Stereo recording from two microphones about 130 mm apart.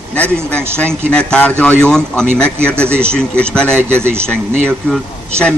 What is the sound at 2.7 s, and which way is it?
Speech, 20° right (ahead or behind).